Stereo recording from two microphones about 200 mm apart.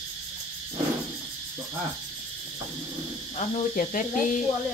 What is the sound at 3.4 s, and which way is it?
Speech, 40° left (ahead or behind).